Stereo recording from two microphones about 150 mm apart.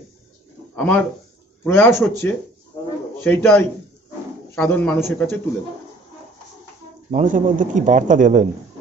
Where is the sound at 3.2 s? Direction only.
10° left (ahead or behind).